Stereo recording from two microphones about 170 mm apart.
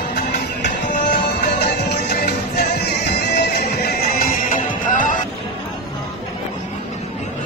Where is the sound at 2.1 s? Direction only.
55° left (ahead or behind).